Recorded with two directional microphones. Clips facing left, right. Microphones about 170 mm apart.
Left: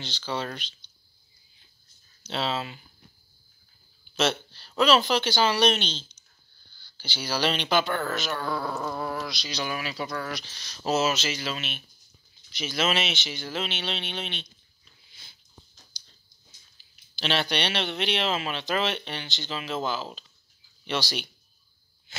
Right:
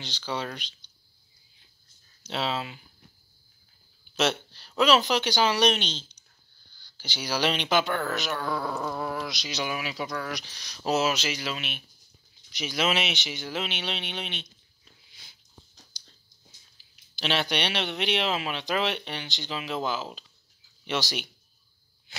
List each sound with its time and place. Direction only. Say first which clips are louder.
0.3 s speech: left 1 dB; 10° right (ahead or behind)
2.2 s speech: left 1 dB; 10° right (ahead or behind)
4.2 s speech: even; centre (ahead or behind)
6.8 s a sound: left 1 dB; 15° right (ahead or behind)
7.2 s speech: even; 15° right (ahead or behind)
8.4 s speech: even; 5° left (ahead or behind)
17.2 s speech: even; 15° right (ahead or behind)